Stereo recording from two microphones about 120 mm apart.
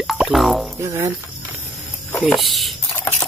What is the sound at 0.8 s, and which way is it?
Speech, 25° right (ahead or behind).